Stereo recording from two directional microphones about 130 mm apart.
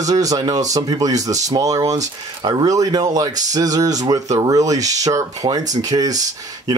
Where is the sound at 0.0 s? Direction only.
30° right (ahead or behind).